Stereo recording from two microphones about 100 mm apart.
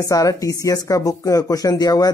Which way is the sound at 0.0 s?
35° left (ahead or behind).